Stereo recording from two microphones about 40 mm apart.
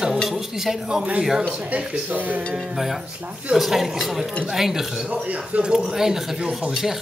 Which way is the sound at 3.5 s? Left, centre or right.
Centre.